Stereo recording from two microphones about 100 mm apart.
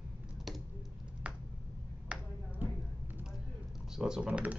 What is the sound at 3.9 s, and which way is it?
Speech, 5° right (ahead or behind).